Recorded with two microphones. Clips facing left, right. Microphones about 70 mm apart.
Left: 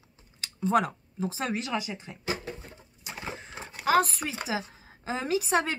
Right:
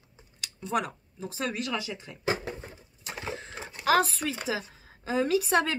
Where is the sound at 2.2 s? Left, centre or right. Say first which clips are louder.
Right 4 dB; right.